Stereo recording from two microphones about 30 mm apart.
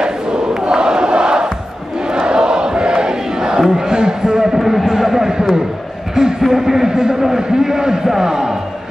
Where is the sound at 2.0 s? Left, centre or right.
Right.